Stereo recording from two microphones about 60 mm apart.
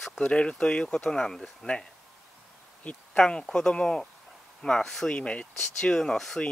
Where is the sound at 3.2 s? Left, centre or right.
Centre.